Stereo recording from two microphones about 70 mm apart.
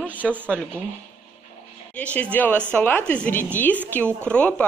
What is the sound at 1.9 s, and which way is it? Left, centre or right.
A woman's voice, centre.